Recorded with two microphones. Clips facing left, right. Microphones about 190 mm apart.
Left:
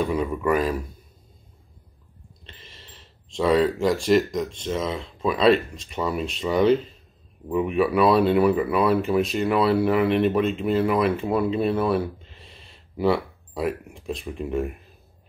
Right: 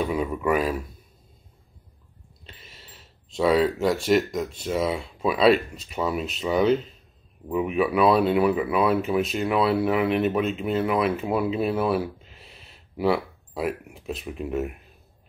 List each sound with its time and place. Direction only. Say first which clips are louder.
0.0 s speech: left 1 dB; 5° right (ahead or behind)
2.4 s speech: even; 5° right (ahead or behind)